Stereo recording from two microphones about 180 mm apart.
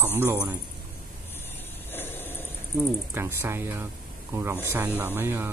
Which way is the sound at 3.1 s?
15° right (ahead or behind).